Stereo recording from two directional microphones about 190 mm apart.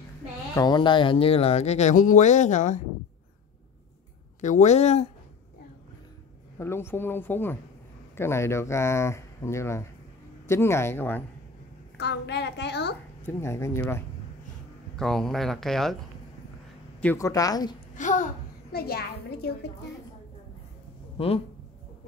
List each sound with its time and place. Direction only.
0.6 s speech: 25° left (ahead or behind); by 2.8 s 40° left (ahead or behind)
4.4 s speech: 40° left (ahead or behind)
6.6 s speech: 15° left (ahead or behind)
12.0 s a woman's voice: 65° left (ahead or behind)
13.3 s speech: 15° left (ahead or behind)
17.0 s a woman's voice: 15° left (ahead or behind)
17.9 s a child's voice: 40° left (ahead or behind)
21.2 s a woman's voice: 30° left (ahead or behind)